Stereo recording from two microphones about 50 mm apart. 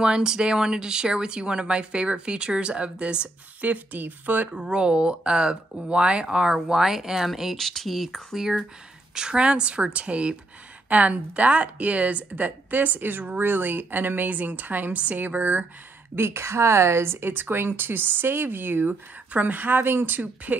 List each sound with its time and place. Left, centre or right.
0.0 s speech: centre; by 4.5 s right
4.5 s speech: centre
7.5 s a woman's voice: centre; by 15.6 s right
16.2 s a woman's voice: right
20.5 s speech: right